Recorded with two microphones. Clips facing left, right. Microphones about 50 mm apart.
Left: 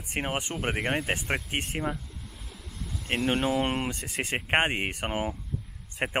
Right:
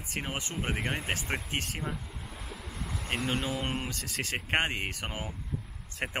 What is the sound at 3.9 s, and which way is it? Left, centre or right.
Speech, left.